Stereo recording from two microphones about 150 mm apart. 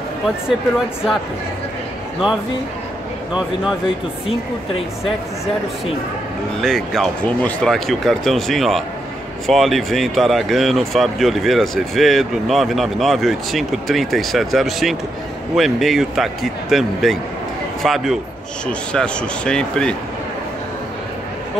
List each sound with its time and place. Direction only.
0.5 s speech: 5° right (ahead or behind)
6.6 s speech: centre (ahead or behind)